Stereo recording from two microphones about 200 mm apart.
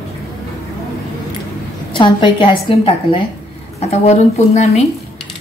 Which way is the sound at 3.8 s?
35° left (ahead or behind).